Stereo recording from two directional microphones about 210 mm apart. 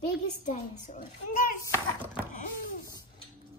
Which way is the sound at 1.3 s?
40° left (ahead or behind).